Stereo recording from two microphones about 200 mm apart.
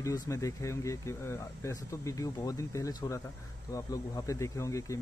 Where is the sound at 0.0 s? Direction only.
15° left (ahead or behind).